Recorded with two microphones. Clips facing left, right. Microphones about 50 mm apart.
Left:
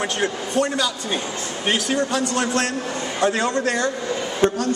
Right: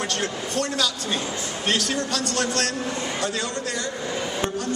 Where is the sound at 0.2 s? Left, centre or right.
Centre.